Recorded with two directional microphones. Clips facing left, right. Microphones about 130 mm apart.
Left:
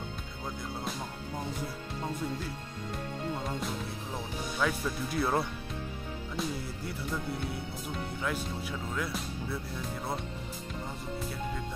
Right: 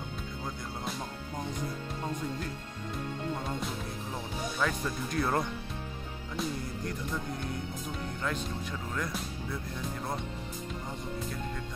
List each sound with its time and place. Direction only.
4.6 s speech: 5° left (ahead or behind)
8.9 s speech: 5° left (ahead or behind)